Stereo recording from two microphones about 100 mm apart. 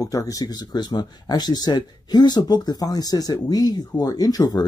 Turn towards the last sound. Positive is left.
turn(degrees=40)  # may be behind; listen again after turning